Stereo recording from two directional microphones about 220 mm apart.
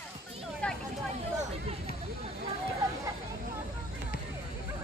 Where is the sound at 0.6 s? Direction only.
5° left (ahead or behind).